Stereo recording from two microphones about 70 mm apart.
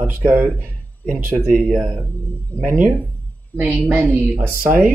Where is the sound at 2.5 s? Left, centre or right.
Left.